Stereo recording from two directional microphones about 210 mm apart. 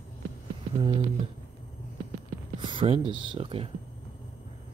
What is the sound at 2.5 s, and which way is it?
Speech, 25° right (ahead or behind).